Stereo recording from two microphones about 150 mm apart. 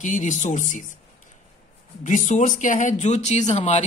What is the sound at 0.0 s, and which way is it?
Speech, 55° left (ahead or behind).